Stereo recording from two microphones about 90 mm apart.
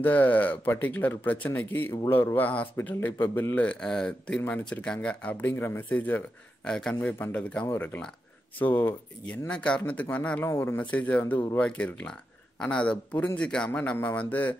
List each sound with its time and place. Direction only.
0.0 s speech: 20° left (ahead or behind)
6.6 s speech: 10° left (ahead or behind)
10.4 s speech: 30° left (ahead or behind)
10.8 s speech: 15° left (ahead or behind)